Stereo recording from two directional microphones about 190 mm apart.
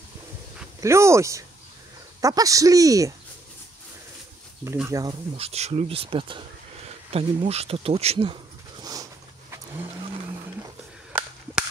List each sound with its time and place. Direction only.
0.7 s speech: 15° right (ahead or behind)
4.7 s speech: 15° right (ahead or behind)
5.4 s speech: 35° right (ahead or behind)